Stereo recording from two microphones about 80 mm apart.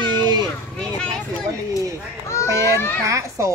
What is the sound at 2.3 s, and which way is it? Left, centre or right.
Speech, left.